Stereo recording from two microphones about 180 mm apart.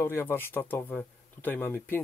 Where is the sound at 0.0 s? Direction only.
10° left (ahead or behind).